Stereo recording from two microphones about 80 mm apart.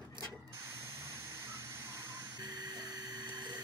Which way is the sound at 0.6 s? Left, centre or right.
Right.